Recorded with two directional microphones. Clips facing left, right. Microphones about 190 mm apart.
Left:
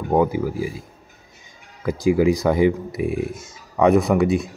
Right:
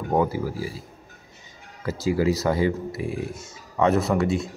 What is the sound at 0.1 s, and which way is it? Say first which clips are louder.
Speech: left 4 dB; 15° left (ahead or behind).